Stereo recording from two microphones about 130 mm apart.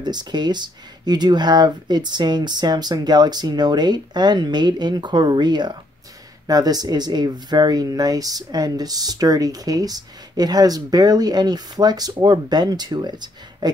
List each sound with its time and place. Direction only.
0.0 s speech: 35° right (ahead or behind)